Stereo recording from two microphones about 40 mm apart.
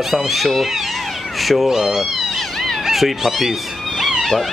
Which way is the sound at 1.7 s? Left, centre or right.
Centre.